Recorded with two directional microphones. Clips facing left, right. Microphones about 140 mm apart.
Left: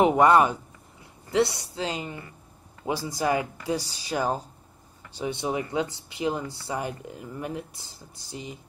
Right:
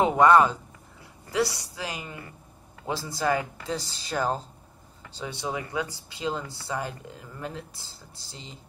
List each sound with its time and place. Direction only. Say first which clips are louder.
0.0 s a woman's voice: even; 20° left (ahead or behind)